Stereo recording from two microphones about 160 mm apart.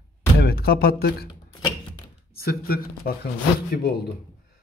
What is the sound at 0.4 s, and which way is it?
Speech, 75° left (ahead or behind).